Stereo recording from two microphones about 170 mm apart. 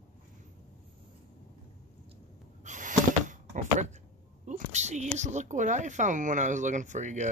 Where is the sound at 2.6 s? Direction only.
45° right (ahead or behind).